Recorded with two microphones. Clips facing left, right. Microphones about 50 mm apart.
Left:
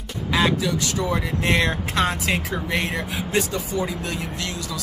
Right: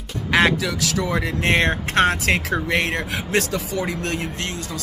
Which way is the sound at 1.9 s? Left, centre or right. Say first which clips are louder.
Right 4 dB; right.